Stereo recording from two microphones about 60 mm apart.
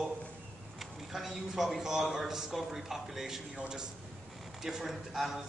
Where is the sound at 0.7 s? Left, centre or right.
Centre.